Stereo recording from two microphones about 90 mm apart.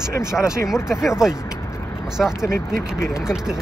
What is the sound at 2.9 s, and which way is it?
Speech, 35° left (ahead or behind).